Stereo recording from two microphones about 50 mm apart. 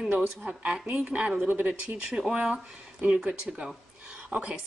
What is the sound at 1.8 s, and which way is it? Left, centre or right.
A woman's voice, right.